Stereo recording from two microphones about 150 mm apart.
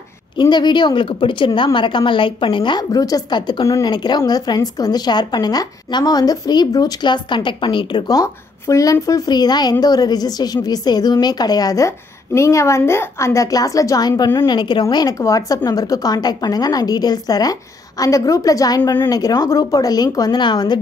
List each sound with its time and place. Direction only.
0.4 s a woman's voice: 30° left (ahead or behind)